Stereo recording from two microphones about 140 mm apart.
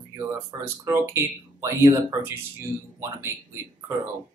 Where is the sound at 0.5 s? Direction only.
25° right (ahead or behind).